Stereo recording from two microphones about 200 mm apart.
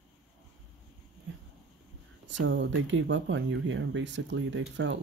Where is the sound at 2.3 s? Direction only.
65° right (ahead or behind).